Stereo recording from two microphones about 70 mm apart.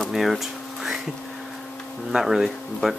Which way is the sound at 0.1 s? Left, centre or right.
Centre.